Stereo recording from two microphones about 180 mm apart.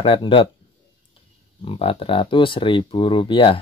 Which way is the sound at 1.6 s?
30° left (ahead or behind).